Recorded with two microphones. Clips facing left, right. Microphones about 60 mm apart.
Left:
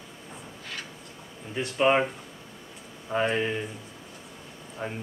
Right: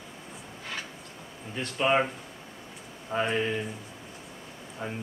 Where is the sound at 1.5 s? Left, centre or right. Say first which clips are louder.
Left 3 dB; centre.